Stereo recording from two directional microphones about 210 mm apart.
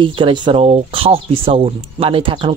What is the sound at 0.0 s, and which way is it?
Speech, 25° right (ahead or behind).